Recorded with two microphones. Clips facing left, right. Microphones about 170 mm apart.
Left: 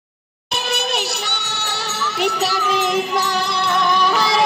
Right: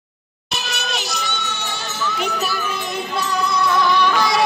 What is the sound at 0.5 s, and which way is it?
Music, 60° left (ahead or behind).